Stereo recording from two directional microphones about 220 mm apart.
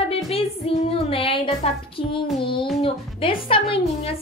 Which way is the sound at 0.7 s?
25° left (ahead or behind).